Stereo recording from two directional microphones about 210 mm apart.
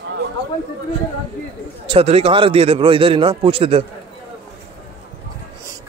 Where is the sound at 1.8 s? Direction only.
30° right (ahead or behind).